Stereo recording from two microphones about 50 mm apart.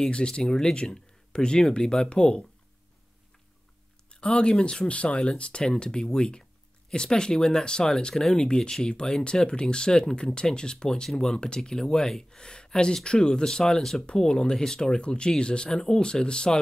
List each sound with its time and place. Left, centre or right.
0.0 s speech: centre
4.1 s speech: centre